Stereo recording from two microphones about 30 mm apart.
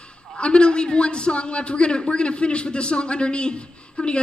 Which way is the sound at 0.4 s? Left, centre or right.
Left.